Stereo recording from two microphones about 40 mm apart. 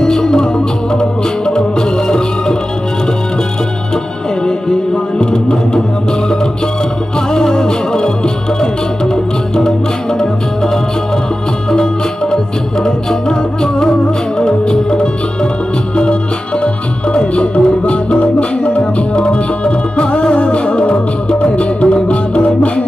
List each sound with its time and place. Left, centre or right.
0.0 s music: centre
4.5 s music: centre
7.3 s music: centre
10.1 s music: centre
16.6 s music: left